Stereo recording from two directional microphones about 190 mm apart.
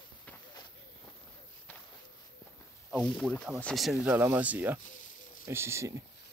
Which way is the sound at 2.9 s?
5° left (ahead or behind).